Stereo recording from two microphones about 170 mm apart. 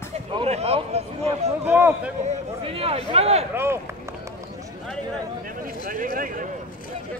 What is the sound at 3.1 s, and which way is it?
Speech, 35° right (ahead or behind).